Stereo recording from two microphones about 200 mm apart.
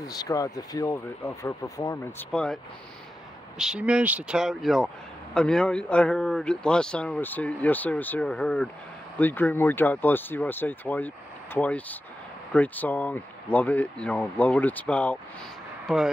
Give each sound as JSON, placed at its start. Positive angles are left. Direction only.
{"t": 0.0, "sound": "speech", "side_deg": 20}
{"t": 2.3, "sound": "speech", "side_deg": 5}